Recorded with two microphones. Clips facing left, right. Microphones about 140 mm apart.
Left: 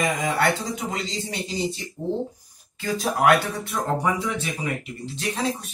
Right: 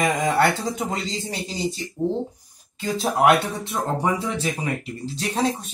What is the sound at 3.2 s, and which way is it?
Speech, 25° right (ahead or behind).